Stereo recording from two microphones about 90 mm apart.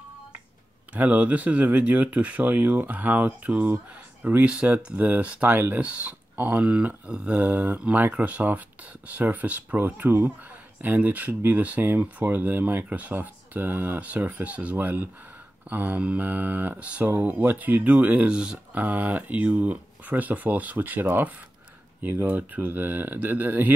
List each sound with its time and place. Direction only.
0.9 s speech: 20° right (ahead or behind)